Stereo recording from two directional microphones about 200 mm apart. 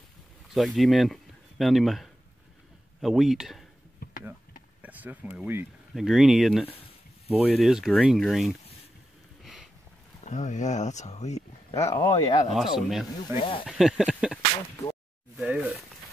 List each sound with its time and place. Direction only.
0.5 s speech: centre (ahead or behind)
4.8 s speech: 10° right (ahead or behind)
9.4 s a sound: centre (ahead or behind)
10.2 s speech: 35° left (ahead or behind)
11.7 s speech: 15° left (ahead or behind)
12.5 s speech: centre (ahead or behind)
13.4 s speech: 25° left (ahead or behind)
13.7 s speech: centre (ahead or behind)